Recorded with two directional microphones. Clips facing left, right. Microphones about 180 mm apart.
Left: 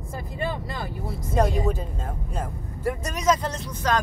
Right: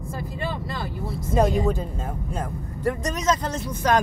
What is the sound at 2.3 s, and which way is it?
Speech, 10° left (ahead or behind).